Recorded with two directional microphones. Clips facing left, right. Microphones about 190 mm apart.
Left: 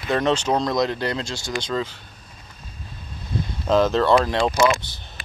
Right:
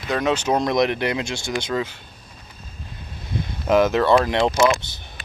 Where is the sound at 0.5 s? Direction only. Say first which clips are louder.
Right 2 dB; 20° right (ahead or behind).